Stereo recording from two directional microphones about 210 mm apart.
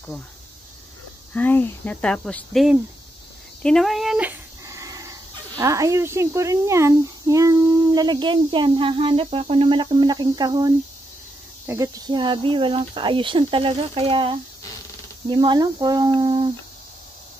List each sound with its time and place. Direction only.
1.3 s speech: 10° left (ahead or behind); by 16.4 s 20° right (ahead or behind)